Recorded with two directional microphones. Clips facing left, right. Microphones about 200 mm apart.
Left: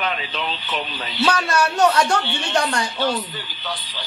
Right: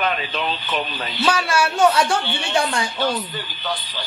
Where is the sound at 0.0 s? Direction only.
50° right (ahead or behind).